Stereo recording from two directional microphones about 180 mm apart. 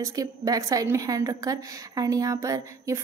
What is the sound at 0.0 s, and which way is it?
A woman's voice, 20° right (ahead or behind).